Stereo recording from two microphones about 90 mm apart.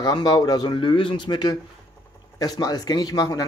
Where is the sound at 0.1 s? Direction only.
50° left (ahead or behind).